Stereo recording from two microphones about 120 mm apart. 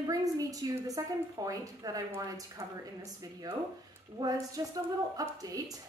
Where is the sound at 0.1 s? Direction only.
30° right (ahead or behind).